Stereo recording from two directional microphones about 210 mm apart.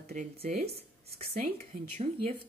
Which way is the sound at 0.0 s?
45° right (ahead or behind).